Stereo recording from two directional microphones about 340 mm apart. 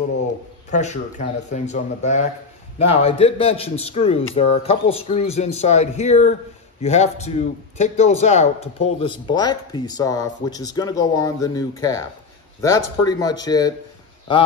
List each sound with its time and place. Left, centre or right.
0.7 s a man's voice: left